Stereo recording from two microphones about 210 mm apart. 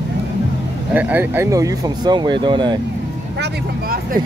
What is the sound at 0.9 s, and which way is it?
Speech, 10° right (ahead or behind).